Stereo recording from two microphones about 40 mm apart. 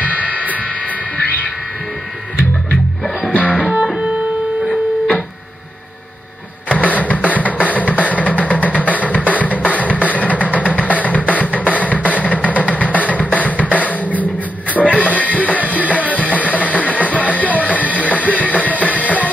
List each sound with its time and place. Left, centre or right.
0.0 s music: left
3.3 s music: left
6.7 s music: left